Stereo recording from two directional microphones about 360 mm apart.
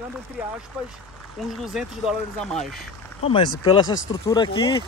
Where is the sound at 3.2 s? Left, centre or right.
Centre.